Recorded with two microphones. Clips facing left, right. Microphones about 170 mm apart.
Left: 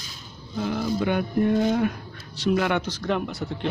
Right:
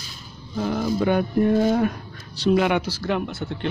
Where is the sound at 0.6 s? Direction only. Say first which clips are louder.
Right 2 dB; 40° right (ahead or behind).